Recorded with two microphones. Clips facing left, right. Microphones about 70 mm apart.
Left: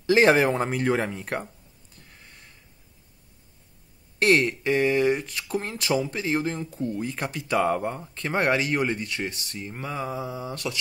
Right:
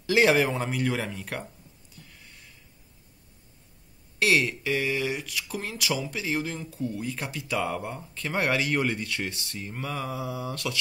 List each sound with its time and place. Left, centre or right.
0.0 s speech: left
2.0 s a sound: left
4.2 s speech: left
8.3 s speech: left